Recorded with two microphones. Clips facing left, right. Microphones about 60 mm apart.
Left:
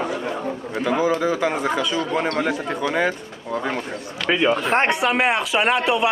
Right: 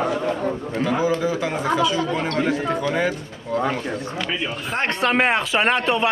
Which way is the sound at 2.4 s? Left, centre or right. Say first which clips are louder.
Right 1 dB; left.